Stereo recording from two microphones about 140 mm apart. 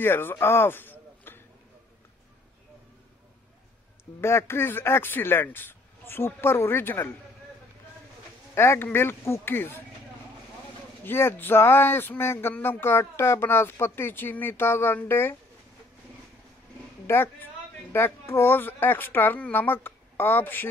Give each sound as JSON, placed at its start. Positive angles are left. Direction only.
{"t": 0.0, "sound": "speech", "side_deg": 15}
{"t": 4.2, "sound": "speech", "side_deg": 15}
{"t": 8.5, "sound": "speech", "side_deg": 15}
{"t": 11.1, "sound": "speech", "side_deg": 15}
{"t": 17.0, "sound": "a woman's voice", "side_deg": 15}